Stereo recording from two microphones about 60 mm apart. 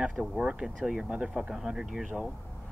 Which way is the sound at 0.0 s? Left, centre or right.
Centre.